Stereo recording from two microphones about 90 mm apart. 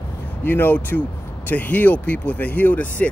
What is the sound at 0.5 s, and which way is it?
Speech, 25° left (ahead or behind).